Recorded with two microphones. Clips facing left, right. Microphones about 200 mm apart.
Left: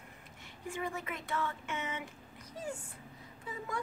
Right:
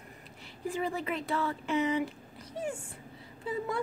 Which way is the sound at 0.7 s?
35° right (ahead or behind).